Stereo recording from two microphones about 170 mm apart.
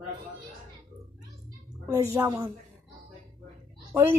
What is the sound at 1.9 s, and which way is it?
Speech, 15° right (ahead or behind).